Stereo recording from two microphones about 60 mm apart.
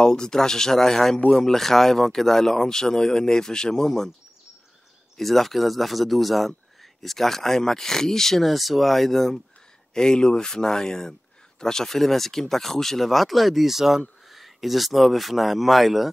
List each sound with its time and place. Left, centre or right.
0.0 s speech: centre
5.1 s speech: centre